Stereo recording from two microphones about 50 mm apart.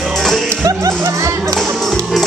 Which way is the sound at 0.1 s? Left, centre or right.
Centre.